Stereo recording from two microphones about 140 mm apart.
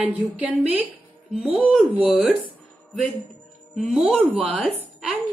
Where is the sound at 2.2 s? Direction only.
40° right (ahead or behind).